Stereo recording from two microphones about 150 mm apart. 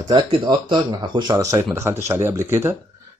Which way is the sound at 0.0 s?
30° right (ahead or behind).